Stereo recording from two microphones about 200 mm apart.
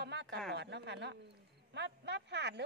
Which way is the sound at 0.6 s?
60° right (ahead or behind).